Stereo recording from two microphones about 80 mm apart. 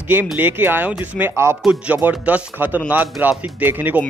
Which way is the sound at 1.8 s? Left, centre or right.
Centre.